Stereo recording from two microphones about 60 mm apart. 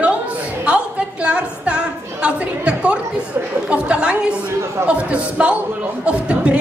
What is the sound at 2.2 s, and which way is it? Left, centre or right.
Chatter, centre.